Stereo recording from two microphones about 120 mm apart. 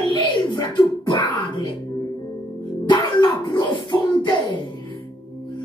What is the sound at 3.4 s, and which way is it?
Music, 40° left (ahead or behind).